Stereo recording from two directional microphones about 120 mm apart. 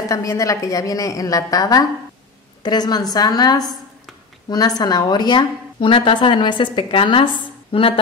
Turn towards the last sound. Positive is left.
turn(degrees=50)  # may be behind; listen again after turning